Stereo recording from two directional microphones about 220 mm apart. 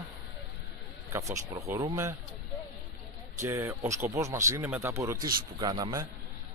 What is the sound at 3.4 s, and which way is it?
Speech, 15° right (ahead or behind).